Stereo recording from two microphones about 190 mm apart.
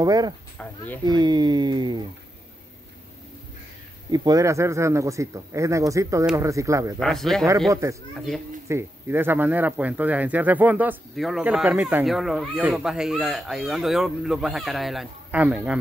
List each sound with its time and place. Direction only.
0.0 s speech: 20° right (ahead or behind)
0.6 s speech: 10° left (ahead or behind)
1.0 s speech: 20° right (ahead or behind)
4.1 s speech: 20° right (ahead or behind)
7.0 s speech: centre (ahead or behind)
7.7 s speech: 15° right (ahead or behind)